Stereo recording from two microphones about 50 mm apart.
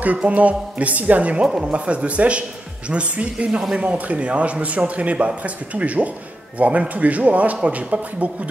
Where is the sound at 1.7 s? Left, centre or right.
Right.